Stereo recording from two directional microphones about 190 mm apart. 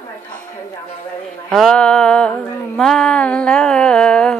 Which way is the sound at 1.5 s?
5° left (ahead or behind).